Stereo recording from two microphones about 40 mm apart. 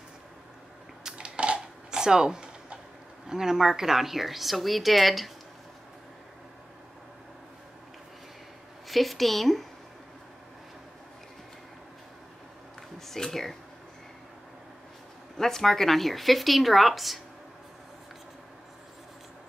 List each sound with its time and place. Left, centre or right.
1.1 s a sound: right
1.9 s a sound: centre
3.3 s a woman's voice: centre
8.8 s a woman's voice: centre
13.1 s speech: centre
15.3 s a woman's voice: centre